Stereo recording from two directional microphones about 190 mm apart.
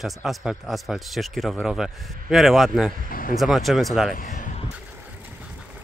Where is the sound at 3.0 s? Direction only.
50° left (ahead or behind).